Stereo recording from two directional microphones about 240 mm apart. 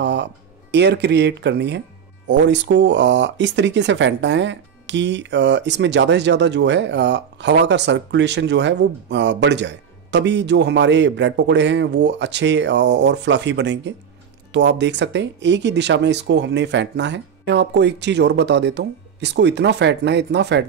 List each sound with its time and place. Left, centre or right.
0.0 s speech: right